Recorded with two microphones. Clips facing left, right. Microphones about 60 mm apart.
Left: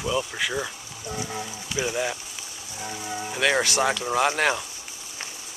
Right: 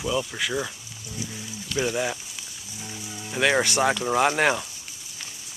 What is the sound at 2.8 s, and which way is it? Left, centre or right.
Speech, left.